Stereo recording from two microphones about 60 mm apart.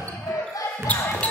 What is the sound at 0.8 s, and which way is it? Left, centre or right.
Basketball bounce, left.